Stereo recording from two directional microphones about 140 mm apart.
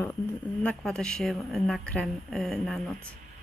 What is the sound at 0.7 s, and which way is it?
Speech, 5° left (ahead or behind).